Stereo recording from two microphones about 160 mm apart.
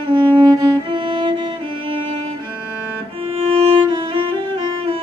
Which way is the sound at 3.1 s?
35° right (ahead or behind).